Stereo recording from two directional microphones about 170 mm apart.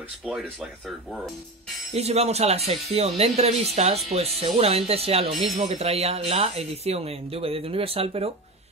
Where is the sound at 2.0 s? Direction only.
40° right (ahead or behind).